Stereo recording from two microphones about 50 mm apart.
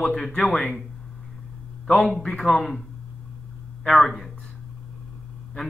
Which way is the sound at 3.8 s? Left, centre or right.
Centre.